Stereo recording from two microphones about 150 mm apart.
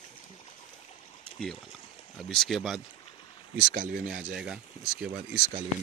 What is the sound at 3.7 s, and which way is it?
Speech, 70° right (ahead or behind).